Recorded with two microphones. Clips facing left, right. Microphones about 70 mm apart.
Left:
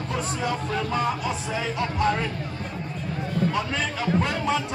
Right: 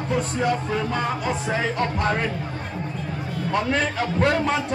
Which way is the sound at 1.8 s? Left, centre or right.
Right.